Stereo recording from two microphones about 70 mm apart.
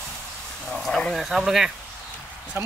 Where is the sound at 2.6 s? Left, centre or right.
Right.